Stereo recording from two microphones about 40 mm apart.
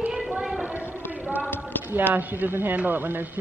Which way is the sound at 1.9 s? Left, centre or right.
Right.